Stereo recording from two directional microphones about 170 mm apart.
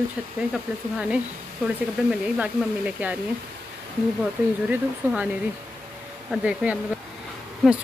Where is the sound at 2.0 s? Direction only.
5° right (ahead or behind).